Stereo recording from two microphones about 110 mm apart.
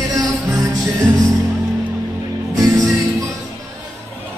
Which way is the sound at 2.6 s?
30° right (ahead or behind).